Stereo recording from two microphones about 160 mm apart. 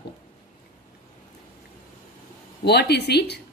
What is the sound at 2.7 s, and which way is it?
Speech, 90° left.